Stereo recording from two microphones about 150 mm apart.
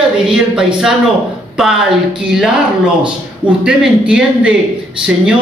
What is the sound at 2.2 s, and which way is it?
Speech, 5° right (ahead or behind).